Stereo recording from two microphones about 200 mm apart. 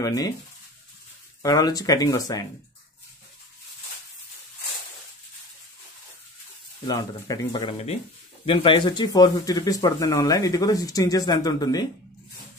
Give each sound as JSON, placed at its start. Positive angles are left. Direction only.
{"t": 0.0, "sound": "speech", "side_deg": 20}
{"t": 1.4, "sound": "speech", "side_deg": 20}
{"t": 6.9, "sound": "speech", "side_deg": 20}